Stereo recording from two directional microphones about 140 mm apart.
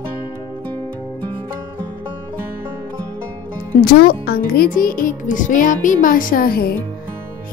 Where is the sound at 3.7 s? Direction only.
90° left.